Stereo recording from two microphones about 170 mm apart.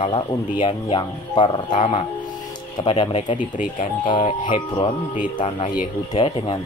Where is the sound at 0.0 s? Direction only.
30° left (ahead or behind).